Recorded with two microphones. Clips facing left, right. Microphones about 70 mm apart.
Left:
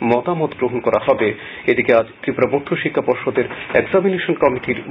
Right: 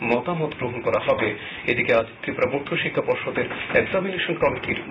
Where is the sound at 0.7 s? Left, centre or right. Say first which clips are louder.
Left 5 dB; left.